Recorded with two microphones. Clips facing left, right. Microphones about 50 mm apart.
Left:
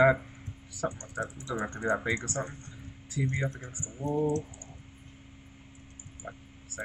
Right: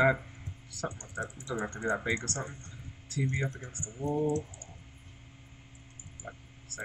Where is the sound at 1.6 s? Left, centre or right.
Centre.